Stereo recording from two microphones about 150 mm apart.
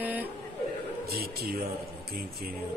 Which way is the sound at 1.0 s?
90° right.